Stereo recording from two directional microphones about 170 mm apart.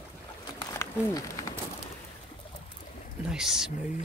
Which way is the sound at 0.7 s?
20° left (ahead or behind).